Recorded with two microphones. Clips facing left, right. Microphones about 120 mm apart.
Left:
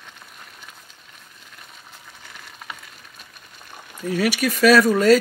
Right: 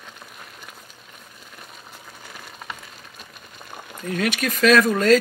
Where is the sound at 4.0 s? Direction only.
10° left (ahead or behind).